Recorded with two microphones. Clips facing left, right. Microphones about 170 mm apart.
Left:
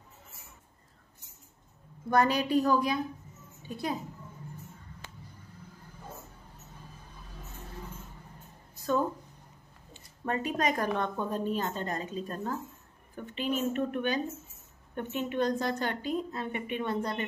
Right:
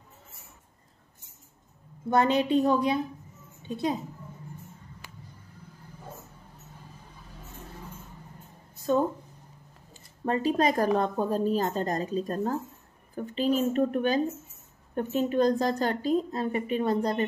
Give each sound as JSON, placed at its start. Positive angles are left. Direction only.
{"t": 2.0, "sound": "a woman's voice", "side_deg": -25}
{"t": 9.9, "sound": "a woman's voice", "side_deg": -30}